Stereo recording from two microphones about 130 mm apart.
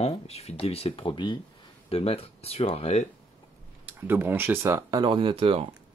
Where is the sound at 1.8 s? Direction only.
50° left (ahead or behind).